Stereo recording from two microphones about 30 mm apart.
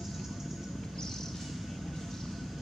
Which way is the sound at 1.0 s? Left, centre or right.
Centre.